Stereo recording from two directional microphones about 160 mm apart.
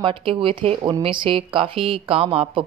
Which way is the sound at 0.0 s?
35° right (ahead or behind).